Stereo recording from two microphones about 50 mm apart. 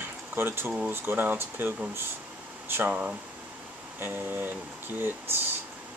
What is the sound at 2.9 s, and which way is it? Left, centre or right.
Speech, right.